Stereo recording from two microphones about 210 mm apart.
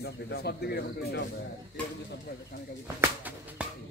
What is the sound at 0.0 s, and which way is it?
Speech, 50° left (ahead or behind).